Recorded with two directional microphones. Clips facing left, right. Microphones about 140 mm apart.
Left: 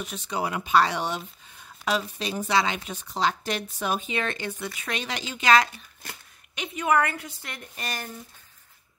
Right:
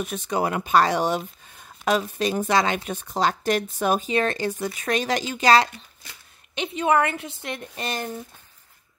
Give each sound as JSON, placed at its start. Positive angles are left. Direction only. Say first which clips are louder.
{"t": 0.0, "sound": "a woman's voice", "louder": "right 5 dB", "side_deg": -50}